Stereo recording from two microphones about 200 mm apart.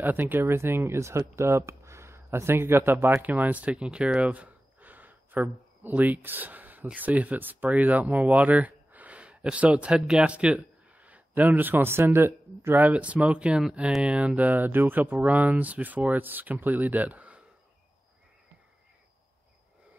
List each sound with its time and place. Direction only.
0.0 s speech: 10° right (ahead or behind)